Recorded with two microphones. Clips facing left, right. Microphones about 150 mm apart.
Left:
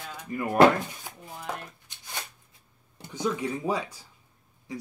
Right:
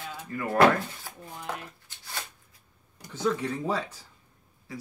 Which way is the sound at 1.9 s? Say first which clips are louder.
Even; 15° left (ahead or behind).